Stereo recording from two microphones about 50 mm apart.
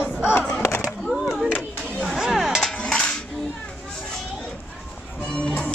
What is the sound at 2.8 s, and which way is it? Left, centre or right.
Cutlery, left.